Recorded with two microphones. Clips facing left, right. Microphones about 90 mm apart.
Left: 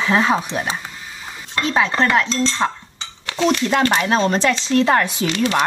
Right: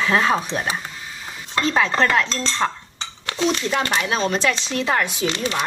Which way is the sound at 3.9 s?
40° left (ahead or behind).